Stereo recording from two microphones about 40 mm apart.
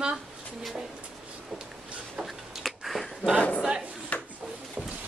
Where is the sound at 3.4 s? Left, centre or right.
Left.